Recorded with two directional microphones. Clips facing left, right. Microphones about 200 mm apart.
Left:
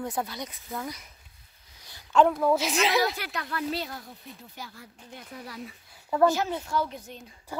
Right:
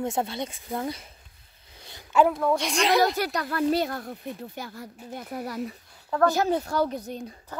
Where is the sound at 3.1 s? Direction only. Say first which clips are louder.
Right 7 dB; 40° right (ahead or behind).